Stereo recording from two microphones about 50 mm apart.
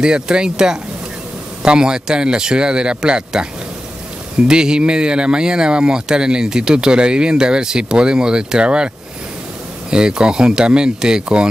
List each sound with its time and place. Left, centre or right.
0.0 s speech: centre
4.5 s speech: centre